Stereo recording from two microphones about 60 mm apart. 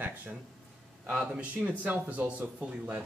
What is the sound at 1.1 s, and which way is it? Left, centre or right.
Speech, centre.